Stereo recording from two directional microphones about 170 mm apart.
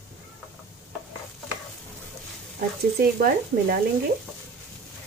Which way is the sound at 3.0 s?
60° right (ahead or behind).